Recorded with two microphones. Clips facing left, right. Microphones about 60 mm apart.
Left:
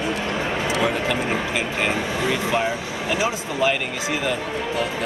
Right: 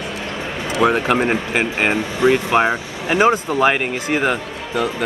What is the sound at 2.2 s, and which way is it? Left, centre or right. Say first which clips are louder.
Speech: right 9 dB; right.